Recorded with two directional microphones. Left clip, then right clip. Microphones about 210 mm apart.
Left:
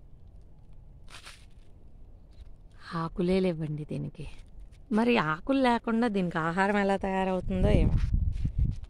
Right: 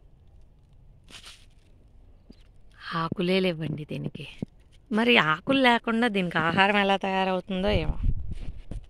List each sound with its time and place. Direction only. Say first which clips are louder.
1.0 s crushing: right 2 dB; 20° right (ahead or behind)
2.8 s speech: right 4 dB; centre (ahead or behind)